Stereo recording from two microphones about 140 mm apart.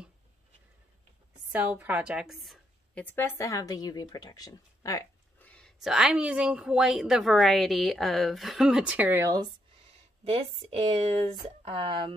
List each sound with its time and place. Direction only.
1.5 s a woman's voice: 10° right (ahead or behind)
3.0 s speech: 15° left (ahead or behind)
5.4 s a sound: 10° left (ahead or behind)
5.8 s a woman's voice: 5° right (ahead or behind); by 9.6 s 30° right (ahead or behind)
10.2 s speech: 45° right (ahead or behind)
11.6 s speech: 40° right (ahead or behind)